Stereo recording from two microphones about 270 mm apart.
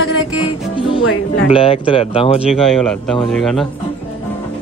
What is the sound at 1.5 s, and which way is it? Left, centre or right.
Speech, left.